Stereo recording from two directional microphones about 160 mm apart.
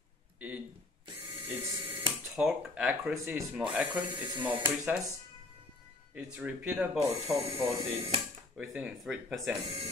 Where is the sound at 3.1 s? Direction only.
20° right (ahead or behind).